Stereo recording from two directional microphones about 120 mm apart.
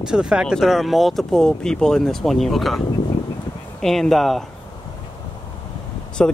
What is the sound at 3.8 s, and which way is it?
Speech, 5° left (ahead or behind).